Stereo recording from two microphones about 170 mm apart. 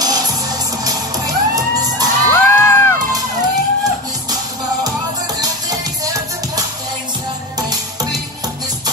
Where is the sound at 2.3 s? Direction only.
15° left (ahead or behind).